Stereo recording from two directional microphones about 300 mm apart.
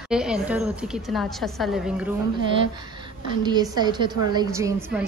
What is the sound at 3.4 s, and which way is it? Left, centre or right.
A woman's voice, centre.